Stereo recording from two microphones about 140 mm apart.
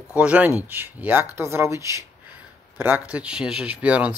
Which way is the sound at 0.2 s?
10° right (ahead or behind).